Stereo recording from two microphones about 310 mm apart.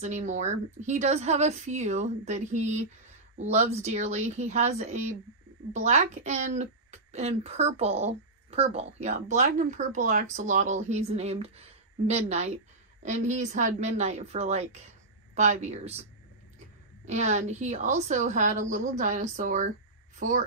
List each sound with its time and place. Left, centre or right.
0.0 s a woman's voice: right